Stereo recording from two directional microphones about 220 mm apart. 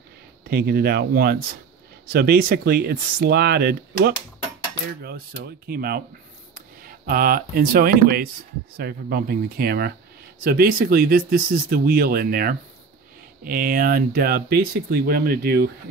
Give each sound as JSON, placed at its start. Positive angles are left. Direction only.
{"t": 0.5, "sound": "speech", "side_deg": -45}
{"t": 7.1, "sound": "speech", "side_deg": -40}